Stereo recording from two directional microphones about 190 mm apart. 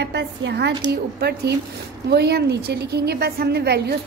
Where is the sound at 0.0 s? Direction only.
65° right (ahead or behind).